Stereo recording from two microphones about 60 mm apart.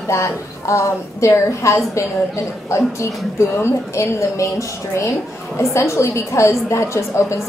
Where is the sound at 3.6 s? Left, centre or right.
Left.